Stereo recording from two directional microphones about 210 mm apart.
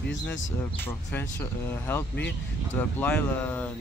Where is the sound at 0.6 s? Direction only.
10° left (ahead or behind).